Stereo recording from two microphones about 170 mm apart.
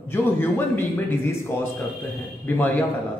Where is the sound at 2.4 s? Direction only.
10° left (ahead or behind).